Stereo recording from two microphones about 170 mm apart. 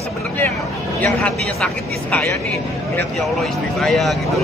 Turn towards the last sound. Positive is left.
turn(degrees=0)  # may be behind; listen again after turning